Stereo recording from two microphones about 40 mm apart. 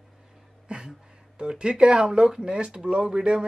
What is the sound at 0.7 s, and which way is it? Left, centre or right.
Speech, right.